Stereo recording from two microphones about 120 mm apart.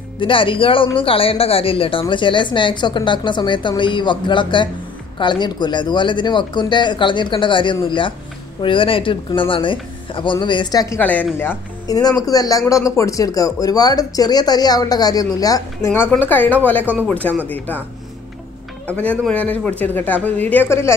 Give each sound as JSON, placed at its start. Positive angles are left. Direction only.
{"t": 0.2, "sound": "speech", "side_deg": 45}
{"t": 11.0, "sound": "a woman's voice", "side_deg": 15}
{"t": 11.9, "sound": "speech", "side_deg": 30}
{"t": 15.9, "sound": "a woman's voice", "side_deg": 15}
{"t": 16.8, "sound": "speech", "side_deg": -15}
{"t": 18.9, "sound": "a woman's voice", "side_deg": 10}